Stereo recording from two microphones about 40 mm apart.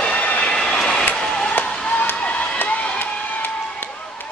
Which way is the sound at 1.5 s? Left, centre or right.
Left.